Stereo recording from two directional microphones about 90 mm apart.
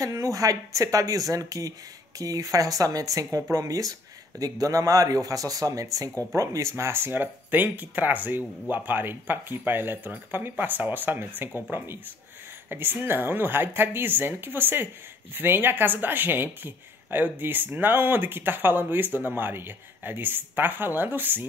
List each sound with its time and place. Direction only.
0.0 s a woman's voice: 35° right (ahead or behind); by 21.5 s 20° right (ahead or behind)